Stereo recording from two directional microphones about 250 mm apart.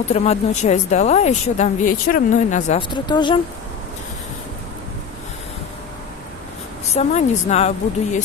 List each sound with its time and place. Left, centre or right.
0.1 s speech: left
2.9 s speech: centre
6.9 s speech: left